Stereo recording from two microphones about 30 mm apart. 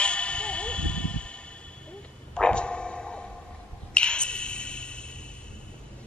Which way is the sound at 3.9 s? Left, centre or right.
Left.